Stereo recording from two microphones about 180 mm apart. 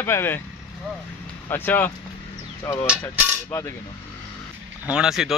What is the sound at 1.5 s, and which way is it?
Speech, 10° left (ahead or behind).